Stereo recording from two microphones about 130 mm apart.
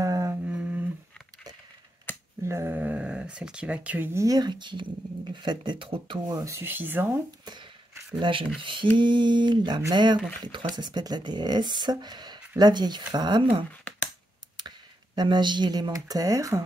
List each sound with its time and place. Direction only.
0.0 s humming: 25° right (ahead or behind)
0.5 s humming: 10° right (ahead or behind)
2.1 s a sound: 15° left (ahead or behind)
2.4 s speech: 20° right (ahead or behind)
7.2 s speech: 35° right (ahead or behind)
15.1 s speech: 35° right (ahead or behind)